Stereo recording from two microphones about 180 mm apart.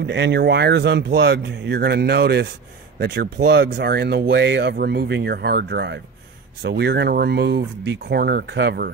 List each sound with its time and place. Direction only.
0.0 s speech: 70° right (ahead or behind)